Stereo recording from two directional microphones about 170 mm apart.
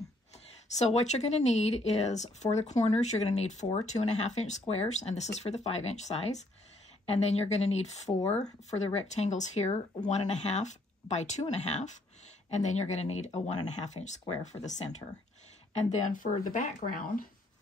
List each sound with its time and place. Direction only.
0.7 s speech: 40° left (ahead or behind)